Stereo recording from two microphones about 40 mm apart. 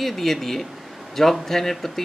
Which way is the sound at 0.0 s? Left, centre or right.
Centre.